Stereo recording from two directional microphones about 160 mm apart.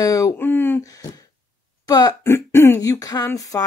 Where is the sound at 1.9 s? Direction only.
25° left (ahead or behind).